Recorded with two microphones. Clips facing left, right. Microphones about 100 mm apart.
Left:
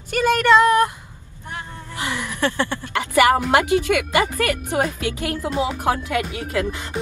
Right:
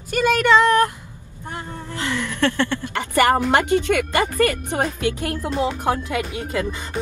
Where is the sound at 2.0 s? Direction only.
15° left (ahead or behind).